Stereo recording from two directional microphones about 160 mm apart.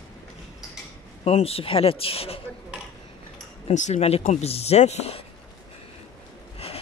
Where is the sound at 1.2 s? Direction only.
40° left (ahead or behind).